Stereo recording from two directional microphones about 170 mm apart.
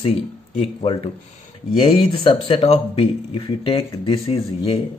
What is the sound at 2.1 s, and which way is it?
Speech, 30° left (ahead or behind).